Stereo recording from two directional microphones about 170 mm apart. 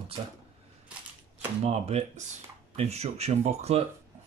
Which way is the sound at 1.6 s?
40° right (ahead or behind).